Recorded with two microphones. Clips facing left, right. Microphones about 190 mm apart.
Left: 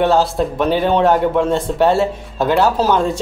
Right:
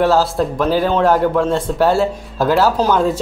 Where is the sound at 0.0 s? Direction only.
Centre (ahead or behind).